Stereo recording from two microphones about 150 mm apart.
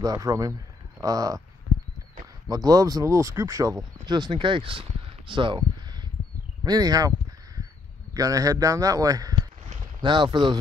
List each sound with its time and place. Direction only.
0.0 s speech: 25° right (ahead or behind)
2.5 s speech: 25° right (ahead or behind)
6.6 s crow: 25° right (ahead or behind)
8.1 s a man's voice: 20° right (ahead or behind)